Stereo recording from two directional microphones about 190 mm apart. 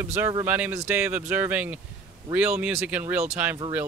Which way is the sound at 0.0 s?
10° right (ahead or behind).